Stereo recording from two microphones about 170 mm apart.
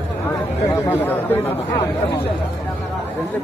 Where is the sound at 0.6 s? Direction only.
10° left (ahead or behind).